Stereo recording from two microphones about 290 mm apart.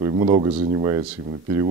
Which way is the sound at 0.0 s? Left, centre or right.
Centre.